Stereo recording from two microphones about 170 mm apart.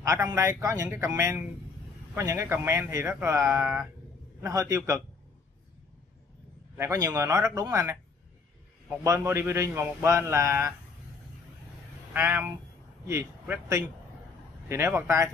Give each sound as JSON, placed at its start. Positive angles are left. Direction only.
{"t": 0.0, "sound": "a man's voice", "side_deg": -20}
{"t": 6.8, "sound": "a man's voice", "side_deg": -20}
{"t": 12.1, "sound": "a man's voice", "side_deg": -10}